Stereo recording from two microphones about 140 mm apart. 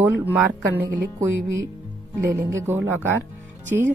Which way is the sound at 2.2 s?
85° right.